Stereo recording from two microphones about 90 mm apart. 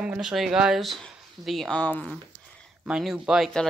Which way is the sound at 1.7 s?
15° left (ahead or behind).